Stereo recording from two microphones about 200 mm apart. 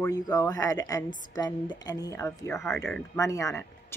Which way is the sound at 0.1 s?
20° left (ahead or behind).